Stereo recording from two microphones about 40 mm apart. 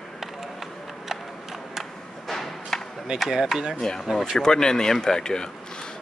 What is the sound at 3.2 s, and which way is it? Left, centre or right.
Speech, centre.